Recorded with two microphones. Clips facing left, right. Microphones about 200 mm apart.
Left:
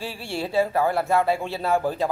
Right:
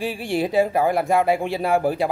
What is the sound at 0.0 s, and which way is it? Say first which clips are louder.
Speech: right 7 dB; 15° right (ahead or behind).